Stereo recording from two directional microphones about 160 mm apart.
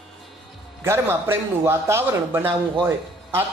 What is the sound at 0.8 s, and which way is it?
A man's voice, 15° right (ahead or behind).